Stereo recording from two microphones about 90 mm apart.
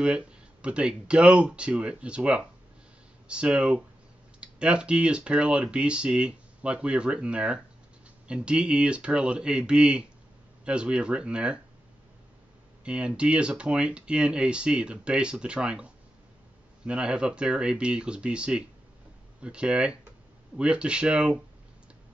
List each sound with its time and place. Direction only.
0.0 s speech: 10° right (ahead or behind)
12.8 s speech: 10° right (ahead or behind)